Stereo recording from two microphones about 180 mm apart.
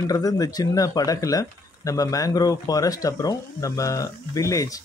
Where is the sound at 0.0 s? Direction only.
20° left (ahead or behind).